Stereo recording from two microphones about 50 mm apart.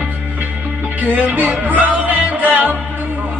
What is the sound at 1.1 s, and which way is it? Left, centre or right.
Music, right.